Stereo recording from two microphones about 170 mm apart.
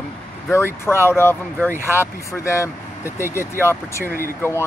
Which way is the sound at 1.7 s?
15° right (ahead or behind).